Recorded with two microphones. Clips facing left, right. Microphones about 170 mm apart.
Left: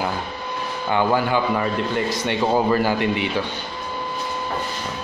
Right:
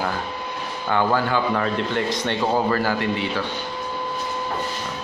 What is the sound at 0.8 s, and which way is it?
A man's voice, 15° left (ahead or behind).